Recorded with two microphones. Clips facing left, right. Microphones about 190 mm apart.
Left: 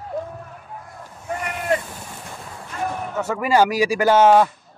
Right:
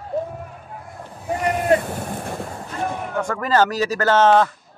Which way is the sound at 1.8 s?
55° right (ahead or behind).